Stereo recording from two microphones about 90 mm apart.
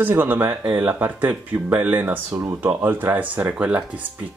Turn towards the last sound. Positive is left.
turn(degrees=-15)  # may be behind; listen again after turning